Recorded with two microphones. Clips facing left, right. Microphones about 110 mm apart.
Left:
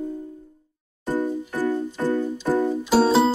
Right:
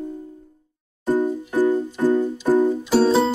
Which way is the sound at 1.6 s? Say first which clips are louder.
Right 6 dB; 15° right (ahead or behind).